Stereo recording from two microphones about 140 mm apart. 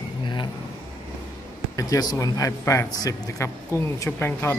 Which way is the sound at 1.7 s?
25° left (ahead or behind).